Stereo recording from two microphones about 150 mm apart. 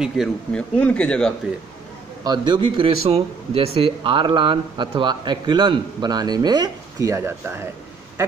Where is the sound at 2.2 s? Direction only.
30° right (ahead or behind).